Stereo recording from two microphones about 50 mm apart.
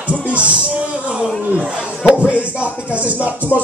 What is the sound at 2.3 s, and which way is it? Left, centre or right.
Speech, right.